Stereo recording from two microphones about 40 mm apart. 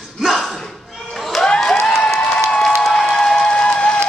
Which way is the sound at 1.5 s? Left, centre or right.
Centre.